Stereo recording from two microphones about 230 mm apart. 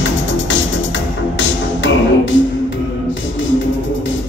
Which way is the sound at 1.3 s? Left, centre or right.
Left.